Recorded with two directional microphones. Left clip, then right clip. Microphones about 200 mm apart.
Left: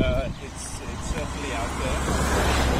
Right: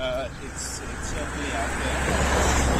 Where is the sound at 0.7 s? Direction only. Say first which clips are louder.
Even; 55° left (ahead or behind).